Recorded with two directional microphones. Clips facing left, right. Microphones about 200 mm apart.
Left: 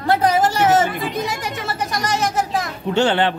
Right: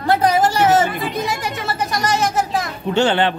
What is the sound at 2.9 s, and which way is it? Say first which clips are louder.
Speech: right 1 dB; 20° right (ahead or behind).